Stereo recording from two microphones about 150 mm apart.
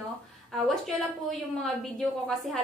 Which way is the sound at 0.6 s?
Centre (ahead or behind).